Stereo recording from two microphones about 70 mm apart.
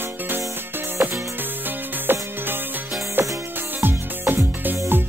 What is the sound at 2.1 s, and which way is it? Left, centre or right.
Music, right.